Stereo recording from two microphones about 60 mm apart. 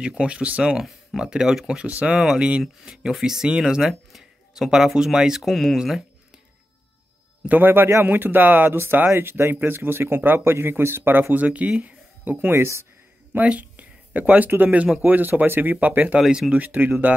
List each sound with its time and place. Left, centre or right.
0.2 s speech: centre
1.9 s speech: right
2.1 s speech: centre
7.4 s speech: right
9.1 s speech: right
13.4 s speech: right
16.2 s speech: centre
16.5 s speech: right